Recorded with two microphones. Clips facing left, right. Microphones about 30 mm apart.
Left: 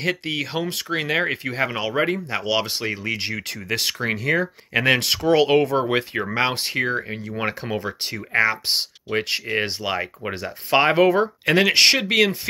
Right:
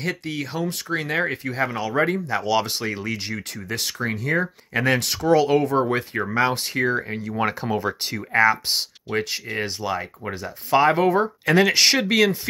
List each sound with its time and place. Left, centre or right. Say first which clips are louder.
0.0 s speech: left 3 dB; left
1.1 s speech: left 2 dB; left
2.0 s speech: right 1 dB; left
3.3 s speech: left 3 dB; left
5.8 s speech: even; left
7.0 s speech: right 2 dB; centre
9.2 s speech: left 3 dB; left
9.7 s speech: left 1 dB; left
11.6 s speech: left 1 dB; left